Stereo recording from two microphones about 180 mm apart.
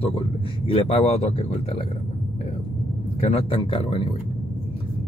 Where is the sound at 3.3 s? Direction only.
30° left (ahead or behind).